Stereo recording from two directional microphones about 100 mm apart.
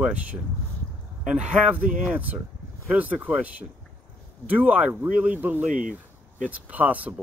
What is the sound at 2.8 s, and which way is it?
Speech, 10° right (ahead or behind).